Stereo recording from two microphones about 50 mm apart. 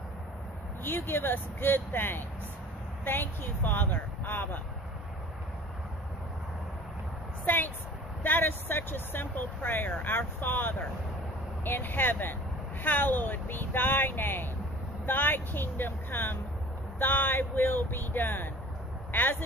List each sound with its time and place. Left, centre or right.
0.8 s speech: left
7.4 s speech: left